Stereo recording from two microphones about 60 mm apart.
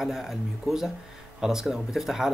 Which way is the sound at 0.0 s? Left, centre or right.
Centre.